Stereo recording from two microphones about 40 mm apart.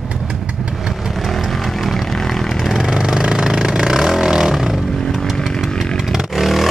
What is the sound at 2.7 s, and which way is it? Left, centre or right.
Vehicle, centre.